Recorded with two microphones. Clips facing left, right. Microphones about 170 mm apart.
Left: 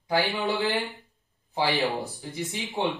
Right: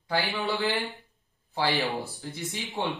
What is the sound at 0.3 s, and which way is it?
Speech, centre (ahead or behind).